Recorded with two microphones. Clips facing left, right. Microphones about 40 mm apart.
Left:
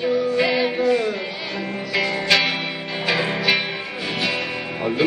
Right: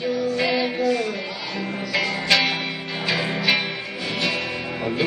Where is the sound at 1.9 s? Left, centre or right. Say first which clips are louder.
Left 1 dB; centre.